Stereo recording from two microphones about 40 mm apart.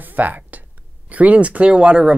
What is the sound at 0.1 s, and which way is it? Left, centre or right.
Speech, right.